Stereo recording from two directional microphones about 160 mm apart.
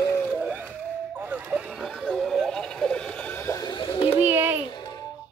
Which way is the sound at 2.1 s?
Centre (ahead or behind).